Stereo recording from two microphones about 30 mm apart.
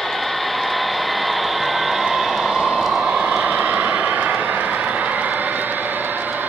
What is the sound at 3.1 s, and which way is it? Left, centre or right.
Vehicle, right.